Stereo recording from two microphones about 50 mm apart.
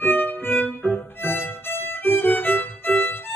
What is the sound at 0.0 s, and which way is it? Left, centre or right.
Violin, left.